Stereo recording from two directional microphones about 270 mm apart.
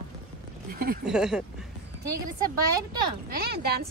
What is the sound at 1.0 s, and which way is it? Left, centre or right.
Speech, centre.